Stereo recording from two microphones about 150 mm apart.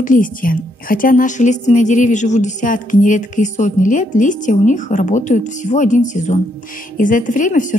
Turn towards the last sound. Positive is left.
turn(degrees=60)  # may be behind; listen again after turning